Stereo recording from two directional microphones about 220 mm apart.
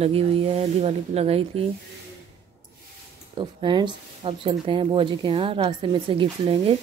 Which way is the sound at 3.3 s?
20° right (ahead or behind).